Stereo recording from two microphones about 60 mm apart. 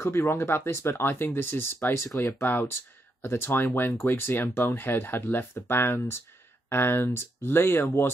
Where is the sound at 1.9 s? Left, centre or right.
Left.